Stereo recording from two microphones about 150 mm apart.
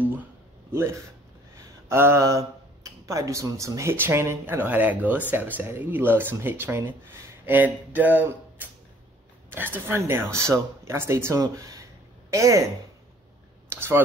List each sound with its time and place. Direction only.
1.6 s speech: 15° right (ahead or behind)
9.5 s speech: 15° right (ahead or behind)
13.7 s computer keyboard: 15° right (ahead or behind)